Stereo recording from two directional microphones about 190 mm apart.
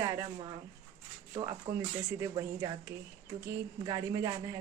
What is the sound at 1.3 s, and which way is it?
A woman's voice, 20° right (ahead or behind).